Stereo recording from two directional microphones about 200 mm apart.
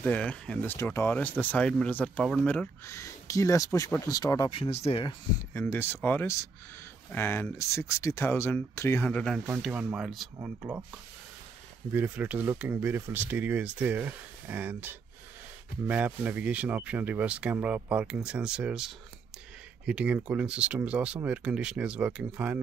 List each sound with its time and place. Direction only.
0.0 s speech: 5° left (ahead or behind); by 5.1 s 30° left (ahead or behind)
5.5 s speech: 10° left (ahead or behind)
11.9 s speech: 10° right (ahead or behind)